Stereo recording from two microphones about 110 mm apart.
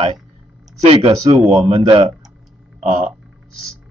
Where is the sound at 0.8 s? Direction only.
70° right (ahead or behind).